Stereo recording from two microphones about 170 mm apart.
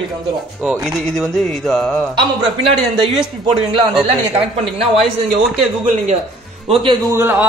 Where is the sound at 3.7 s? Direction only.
30° right (ahead or behind).